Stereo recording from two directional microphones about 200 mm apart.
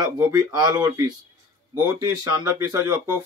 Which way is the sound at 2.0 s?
20° right (ahead or behind).